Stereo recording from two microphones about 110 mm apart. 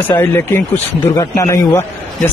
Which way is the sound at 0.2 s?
20° left (ahead or behind).